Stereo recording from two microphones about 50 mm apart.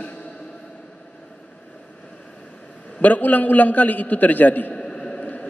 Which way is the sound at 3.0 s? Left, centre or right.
Left.